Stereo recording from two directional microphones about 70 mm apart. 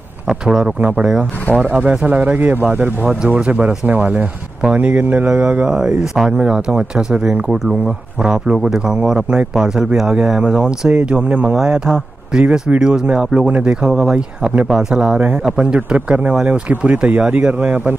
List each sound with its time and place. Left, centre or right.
0.3 s speech: centre; by 5.8 s right
5.9 s speech: centre
11.5 s speech: centre
15.1 s speech: right